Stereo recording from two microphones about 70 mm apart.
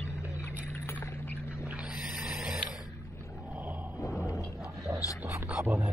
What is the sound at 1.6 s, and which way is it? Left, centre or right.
Boat, centre.